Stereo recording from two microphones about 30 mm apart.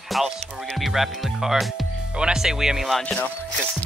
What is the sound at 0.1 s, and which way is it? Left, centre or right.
Music, centre.